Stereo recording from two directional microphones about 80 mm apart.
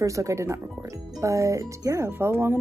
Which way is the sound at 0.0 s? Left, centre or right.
Right.